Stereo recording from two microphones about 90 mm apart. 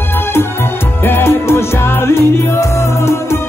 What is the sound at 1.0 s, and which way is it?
Music, 25° left (ahead or behind).